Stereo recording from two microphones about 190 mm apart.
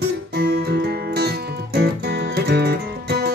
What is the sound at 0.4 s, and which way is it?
Music, 55° right (ahead or behind).